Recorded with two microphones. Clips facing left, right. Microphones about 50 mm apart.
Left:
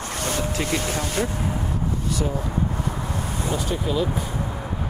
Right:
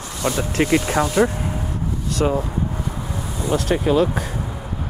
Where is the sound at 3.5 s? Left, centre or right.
Right.